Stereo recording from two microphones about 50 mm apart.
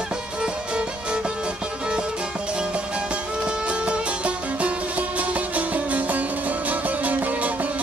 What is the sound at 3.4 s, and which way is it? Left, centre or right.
Music, right.